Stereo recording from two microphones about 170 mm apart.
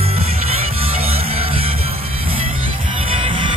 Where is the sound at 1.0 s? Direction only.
35° right (ahead or behind).